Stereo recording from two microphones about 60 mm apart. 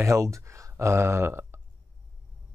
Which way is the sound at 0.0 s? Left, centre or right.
Right.